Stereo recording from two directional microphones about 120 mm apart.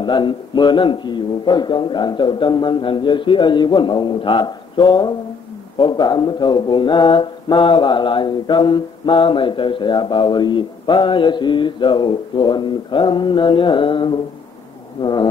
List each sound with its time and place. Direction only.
0.0 s mantra: 40° left (ahead or behind)